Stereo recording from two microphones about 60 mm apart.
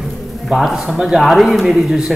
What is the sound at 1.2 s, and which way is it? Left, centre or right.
Speech, centre.